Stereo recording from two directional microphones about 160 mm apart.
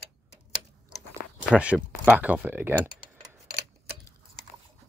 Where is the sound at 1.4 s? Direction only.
5° right (ahead or behind).